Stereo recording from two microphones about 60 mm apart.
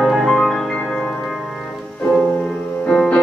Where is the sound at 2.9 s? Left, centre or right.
Centre.